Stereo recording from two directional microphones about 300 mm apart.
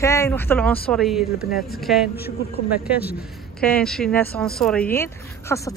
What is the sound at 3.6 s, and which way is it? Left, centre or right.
Speech, centre.